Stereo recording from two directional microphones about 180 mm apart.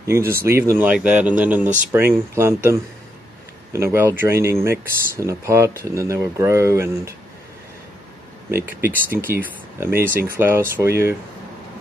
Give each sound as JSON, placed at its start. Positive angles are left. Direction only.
{"t": 0.0, "sound": "speech", "side_deg": -15}
{"t": 8.5, "sound": "speech", "side_deg": -15}